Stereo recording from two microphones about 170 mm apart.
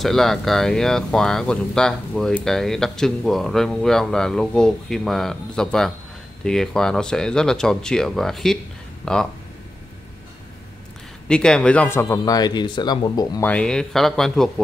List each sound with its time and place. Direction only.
0.0 s speech: centre (ahead or behind)
11.2 s speech: 5° left (ahead or behind); by 13.4 s 25° left (ahead or behind)
13.4 s speech: 10° left (ahead or behind)